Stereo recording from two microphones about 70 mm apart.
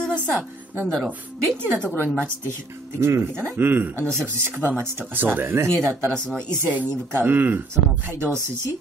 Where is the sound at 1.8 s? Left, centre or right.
Left.